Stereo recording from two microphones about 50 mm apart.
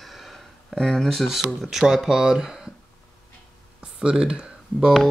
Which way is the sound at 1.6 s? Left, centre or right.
Centre.